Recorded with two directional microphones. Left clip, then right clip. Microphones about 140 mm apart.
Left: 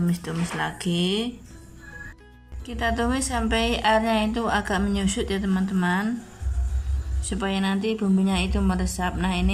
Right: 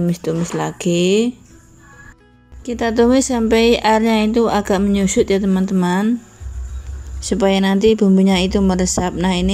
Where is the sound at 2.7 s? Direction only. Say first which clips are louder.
Right 10 dB; 35° right (ahead or behind).